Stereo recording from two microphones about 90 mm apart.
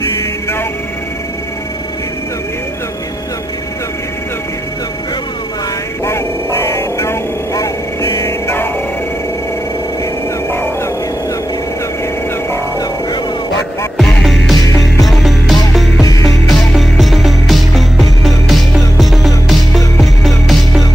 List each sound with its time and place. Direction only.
0.0 s music: 35° left (ahead or behind)
6.0 s vehicle: 30° left (ahead or behind)
13.9 s music: centre (ahead or behind)
16.0 s music: 40° left (ahead or behind)
16.3 s music: centre (ahead or behind)